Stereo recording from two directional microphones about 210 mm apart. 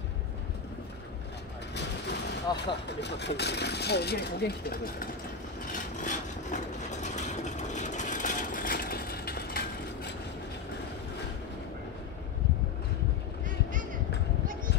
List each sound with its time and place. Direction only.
2.5 s speech: 20° left (ahead or behind)
3.0 s speech: 55° left (ahead or behind)
5.7 s vehicle: 35° left (ahead or behind)